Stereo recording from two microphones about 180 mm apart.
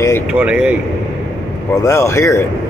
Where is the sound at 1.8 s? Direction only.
15° left (ahead or behind).